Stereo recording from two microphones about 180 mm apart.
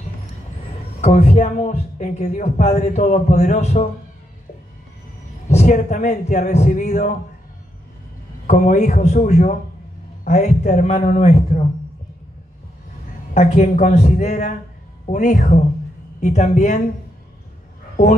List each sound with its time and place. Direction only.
1.0 s speech: 35° left (ahead or behind)
5.5 s a man's voice: 40° left (ahead or behind)
8.5 s a man's voice: 40° left (ahead or behind)
13.3 s a man's voice: 45° left (ahead or behind)